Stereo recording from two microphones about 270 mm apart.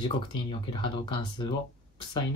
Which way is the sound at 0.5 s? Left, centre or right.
Centre.